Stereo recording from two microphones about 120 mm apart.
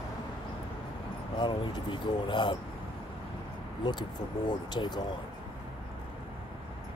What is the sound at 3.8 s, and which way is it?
Speech, 35° left (ahead or behind).